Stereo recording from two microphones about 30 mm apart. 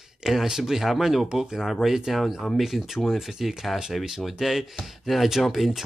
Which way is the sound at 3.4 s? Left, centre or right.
Centre.